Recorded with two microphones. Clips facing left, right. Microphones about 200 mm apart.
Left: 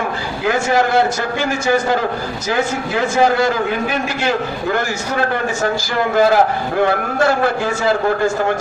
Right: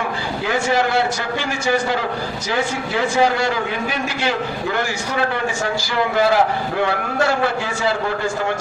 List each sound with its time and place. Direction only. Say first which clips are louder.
0.5 s a man's voice: left 4 dB; 45° left (ahead or behind)